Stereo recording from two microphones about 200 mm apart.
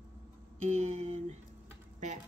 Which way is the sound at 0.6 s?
35° right (ahead or behind).